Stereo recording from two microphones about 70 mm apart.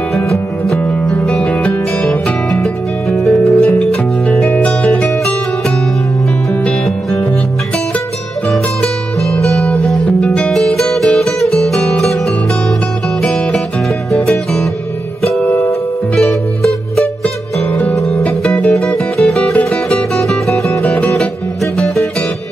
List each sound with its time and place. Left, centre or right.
0.8 s music: centre
8.5 s music: centre
13.2 s music: centre
16.2 s music: centre
18.5 s music: centre
19.1 s music: centre